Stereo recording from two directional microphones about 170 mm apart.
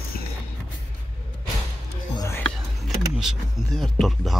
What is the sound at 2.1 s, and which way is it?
Music, 20° left (ahead or behind).